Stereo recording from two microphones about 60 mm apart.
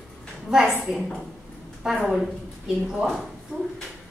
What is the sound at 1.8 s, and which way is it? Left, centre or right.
Speech, centre.